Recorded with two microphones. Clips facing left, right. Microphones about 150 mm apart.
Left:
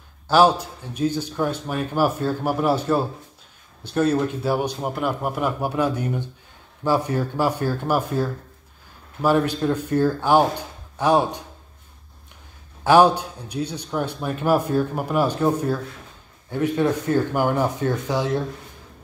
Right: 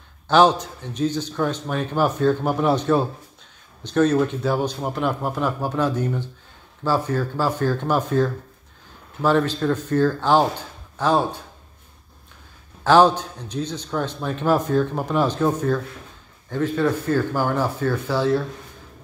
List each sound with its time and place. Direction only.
0.3 s a man's voice: 5° left (ahead or behind)
12.8 s a man's voice: 10° left (ahead or behind)